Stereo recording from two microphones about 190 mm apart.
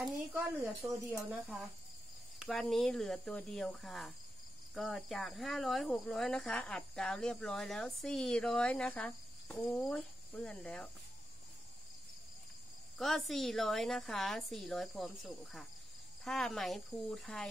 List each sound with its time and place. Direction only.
0.0 s speech: centre (ahead or behind)
0.6 s speech: 15° right (ahead or behind)
2.3 s speech: centre (ahead or behind)
12.9 s speech: centre (ahead or behind)